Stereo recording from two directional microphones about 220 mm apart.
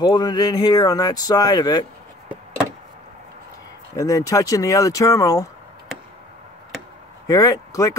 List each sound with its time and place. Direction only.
0.0 s speech: 15° left (ahead or behind)
3.9 s speech: 15° left (ahead or behind)
7.2 s speech: 15° left (ahead or behind)